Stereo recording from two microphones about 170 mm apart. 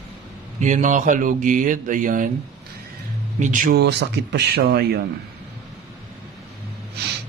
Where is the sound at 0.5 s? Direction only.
45° right (ahead or behind).